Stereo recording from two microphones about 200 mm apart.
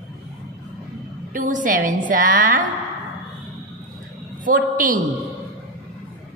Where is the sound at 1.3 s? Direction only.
40° right (ahead or behind).